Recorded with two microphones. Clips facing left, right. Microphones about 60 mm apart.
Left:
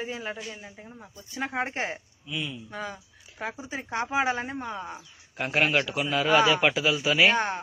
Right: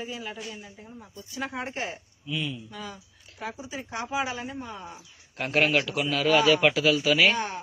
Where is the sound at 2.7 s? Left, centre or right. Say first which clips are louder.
Left 4 dB; left.